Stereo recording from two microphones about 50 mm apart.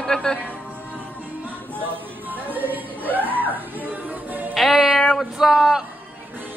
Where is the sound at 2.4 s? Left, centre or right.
Right.